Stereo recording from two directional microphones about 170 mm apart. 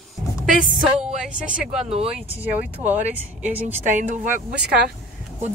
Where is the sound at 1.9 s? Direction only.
35° right (ahead or behind).